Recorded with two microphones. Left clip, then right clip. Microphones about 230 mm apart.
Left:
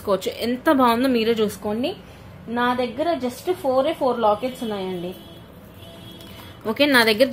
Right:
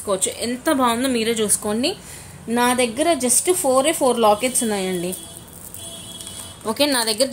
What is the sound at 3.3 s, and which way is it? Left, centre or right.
A woman's voice, right.